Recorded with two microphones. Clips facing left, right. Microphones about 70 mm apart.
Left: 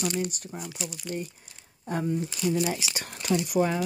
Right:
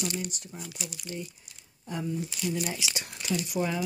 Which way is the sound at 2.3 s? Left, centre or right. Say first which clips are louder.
Left 5 dB; left.